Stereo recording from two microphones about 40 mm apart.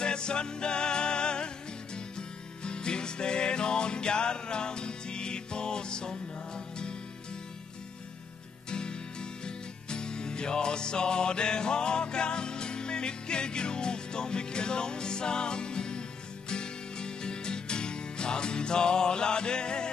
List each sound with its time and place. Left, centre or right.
0.0 s music: left
8.6 s music: left